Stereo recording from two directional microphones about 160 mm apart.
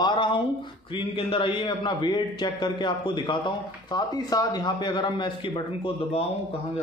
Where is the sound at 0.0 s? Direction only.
30° left (ahead or behind).